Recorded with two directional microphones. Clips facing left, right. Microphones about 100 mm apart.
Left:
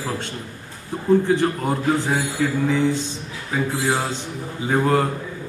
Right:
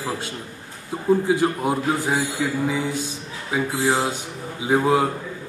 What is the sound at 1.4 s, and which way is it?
Speech, 10° right (ahead or behind).